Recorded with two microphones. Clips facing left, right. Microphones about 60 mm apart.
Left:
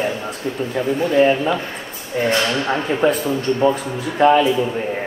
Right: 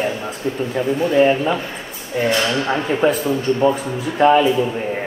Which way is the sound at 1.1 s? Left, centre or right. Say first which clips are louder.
Even; centre.